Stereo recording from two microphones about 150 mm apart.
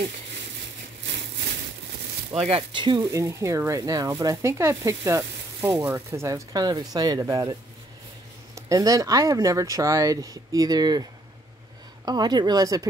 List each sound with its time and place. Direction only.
2.4 s speech: 35° right (ahead or behind)
8.5 s speech: 25° right (ahead or behind)